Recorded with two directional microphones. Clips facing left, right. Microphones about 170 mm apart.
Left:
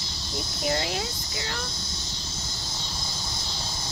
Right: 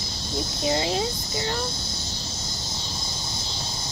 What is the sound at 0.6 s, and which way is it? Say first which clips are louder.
Speech: right 3 dB; 25° right (ahead or behind).